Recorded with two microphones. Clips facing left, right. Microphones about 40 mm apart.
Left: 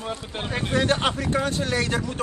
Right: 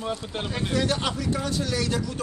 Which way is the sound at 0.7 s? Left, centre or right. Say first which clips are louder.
Left 4 dB; left.